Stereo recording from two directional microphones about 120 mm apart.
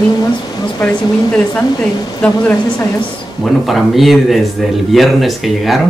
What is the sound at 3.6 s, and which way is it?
Speech, centre (ahead or behind).